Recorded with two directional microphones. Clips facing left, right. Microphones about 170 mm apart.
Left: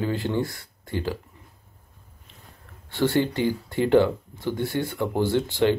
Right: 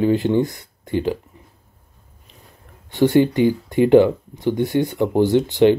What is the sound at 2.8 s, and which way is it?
Speech, 15° right (ahead or behind).